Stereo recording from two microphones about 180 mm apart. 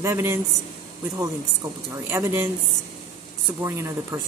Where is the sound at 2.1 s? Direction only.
15° right (ahead or behind).